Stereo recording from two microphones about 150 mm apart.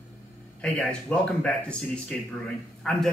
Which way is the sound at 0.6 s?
5° left (ahead or behind).